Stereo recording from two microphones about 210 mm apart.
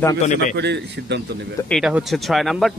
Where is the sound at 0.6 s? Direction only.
55° right (ahead or behind).